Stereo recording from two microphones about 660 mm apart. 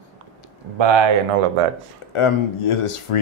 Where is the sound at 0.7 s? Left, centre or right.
Right.